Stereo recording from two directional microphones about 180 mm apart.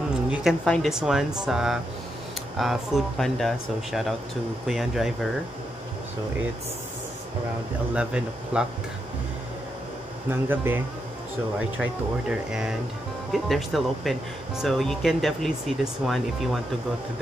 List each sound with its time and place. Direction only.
0.1 s speech: 5° right (ahead or behind)
7.9 s speech: 5° right (ahead or behind)
10.5 s speech: 10° right (ahead or behind)
11.8 s speech: 5° right (ahead or behind)